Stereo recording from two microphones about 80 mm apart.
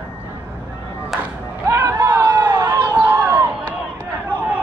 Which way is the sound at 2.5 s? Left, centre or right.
Right.